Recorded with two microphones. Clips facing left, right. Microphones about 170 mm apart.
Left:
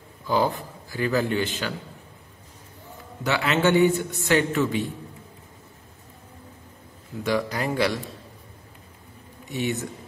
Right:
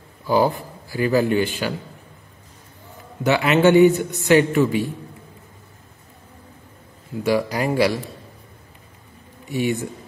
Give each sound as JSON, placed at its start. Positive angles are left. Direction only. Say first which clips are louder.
{"t": 0.3, "sound": "a man's voice", "louder": "right 5 dB", "side_deg": -10}
{"t": 3.3, "sound": "a man's voice", "louder": "right 6 dB", "side_deg": -15}
{"t": 7.3, "sound": "a man's voice", "louder": "right 4 dB", "side_deg": -10}
{"t": 9.5, "sound": "a man's voice", "louder": "right 5 dB", "side_deg": -10}